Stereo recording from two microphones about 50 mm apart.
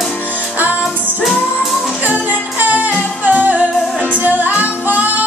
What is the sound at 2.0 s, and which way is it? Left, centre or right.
Music, right.